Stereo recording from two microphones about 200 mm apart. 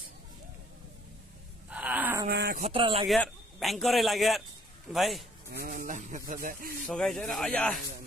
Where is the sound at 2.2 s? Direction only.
50° right (ahead or behind).